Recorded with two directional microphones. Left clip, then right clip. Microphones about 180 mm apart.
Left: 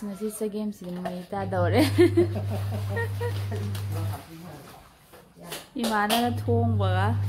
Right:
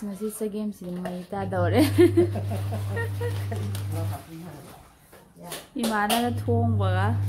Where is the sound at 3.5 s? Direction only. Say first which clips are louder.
Right 1 dB; 35° right (ahead or behind).